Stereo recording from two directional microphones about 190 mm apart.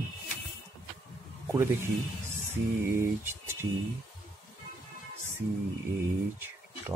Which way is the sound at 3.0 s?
10° right (ahead or behind).